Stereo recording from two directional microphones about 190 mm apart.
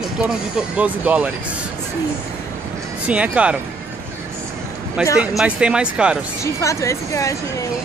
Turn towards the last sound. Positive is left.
turn(degrees=15)  # may be behind; listen again after turning